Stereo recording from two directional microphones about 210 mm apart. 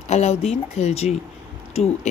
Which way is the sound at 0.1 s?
30° left (ahead or behind).